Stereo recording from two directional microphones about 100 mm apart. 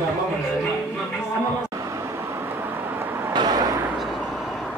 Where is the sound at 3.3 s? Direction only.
45° right (ahead or behind).